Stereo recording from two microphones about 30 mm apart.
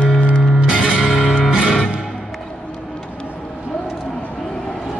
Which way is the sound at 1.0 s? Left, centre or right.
Right.